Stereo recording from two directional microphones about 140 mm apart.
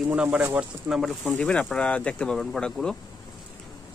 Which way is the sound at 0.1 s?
10° right (ahead or behind).